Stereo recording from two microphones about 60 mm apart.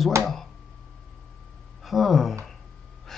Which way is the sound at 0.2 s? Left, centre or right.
Right.